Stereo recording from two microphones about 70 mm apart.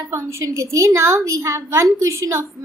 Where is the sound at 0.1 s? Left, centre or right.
Right.